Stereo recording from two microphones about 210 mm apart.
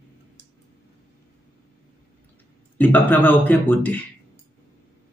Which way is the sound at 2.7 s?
10° left (ahead or behind).